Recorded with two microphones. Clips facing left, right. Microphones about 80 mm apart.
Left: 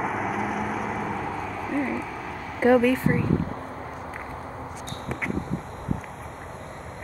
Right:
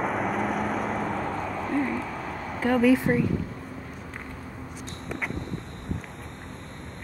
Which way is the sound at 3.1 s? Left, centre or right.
Centre.